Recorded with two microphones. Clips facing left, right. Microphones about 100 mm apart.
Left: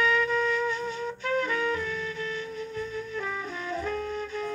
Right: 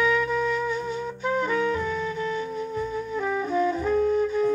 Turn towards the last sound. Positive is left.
turn(degrees=-15)  # may be behind; listen again after turning